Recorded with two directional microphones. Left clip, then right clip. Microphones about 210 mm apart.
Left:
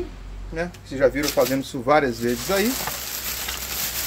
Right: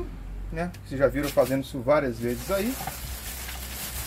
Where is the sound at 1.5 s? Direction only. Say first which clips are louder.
Left 4 dB; 15° left (ahead or behind).